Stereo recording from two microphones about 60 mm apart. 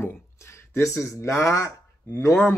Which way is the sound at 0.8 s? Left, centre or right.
Left.